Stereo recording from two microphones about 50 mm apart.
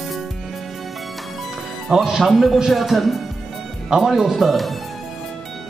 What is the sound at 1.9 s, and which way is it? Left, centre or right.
Speech, centre.